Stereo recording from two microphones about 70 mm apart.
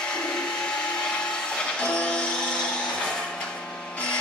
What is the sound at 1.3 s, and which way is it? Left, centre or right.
Music, centre.